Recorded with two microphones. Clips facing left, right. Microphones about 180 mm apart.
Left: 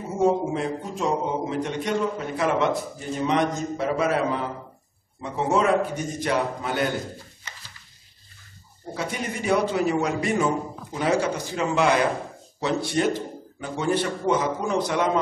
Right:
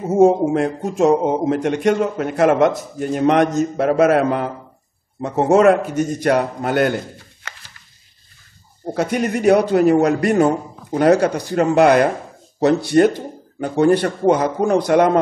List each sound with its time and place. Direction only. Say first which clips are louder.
0.2 s a man's voice: right 8 dB; 75° right (ahead or behind)
5.2 s a man's voice: right 8 dB; 50° right (ahead or behind)
5.5 s a man's voice: right 8 dB; 75° right (ahead or behind)
8.9 s a man's voice: right 10 dB; 70° right (ahead or behind)